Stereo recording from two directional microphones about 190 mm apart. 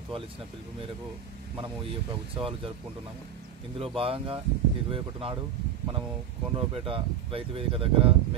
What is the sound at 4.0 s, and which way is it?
Speech, 30° right (ahead or behind).